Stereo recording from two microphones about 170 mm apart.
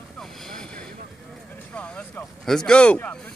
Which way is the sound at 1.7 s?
5° left (ahead or behind).